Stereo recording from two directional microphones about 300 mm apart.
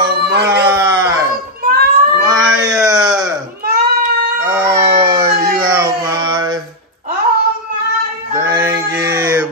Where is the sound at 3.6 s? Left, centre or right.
Right.